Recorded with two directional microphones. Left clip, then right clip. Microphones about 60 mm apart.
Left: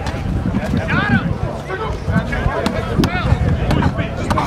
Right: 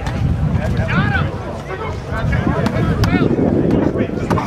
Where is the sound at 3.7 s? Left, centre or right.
Left.